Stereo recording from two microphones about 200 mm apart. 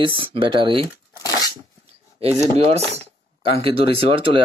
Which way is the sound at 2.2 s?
30° right (ahead or behind).